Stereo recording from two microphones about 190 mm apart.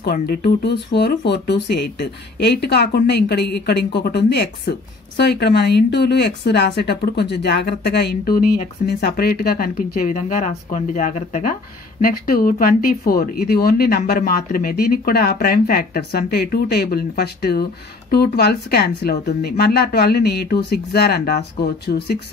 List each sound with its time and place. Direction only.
0.0 s speech: 55° left (ahead or behind)